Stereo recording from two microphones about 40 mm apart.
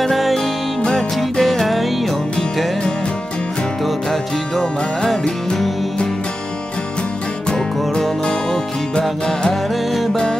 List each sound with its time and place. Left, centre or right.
0.0 s music: centre
3.8 s music: centre
7.4 s music: left